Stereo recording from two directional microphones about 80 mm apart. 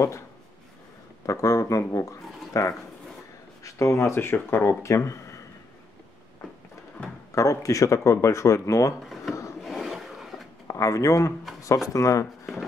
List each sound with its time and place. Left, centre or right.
1.2 s speech: left
7.3 s speech: left
9.0 s a sound: centre
10.7 s speech: left